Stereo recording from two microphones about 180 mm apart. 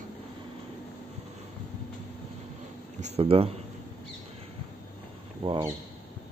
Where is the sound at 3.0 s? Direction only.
30° right (ahead or behind).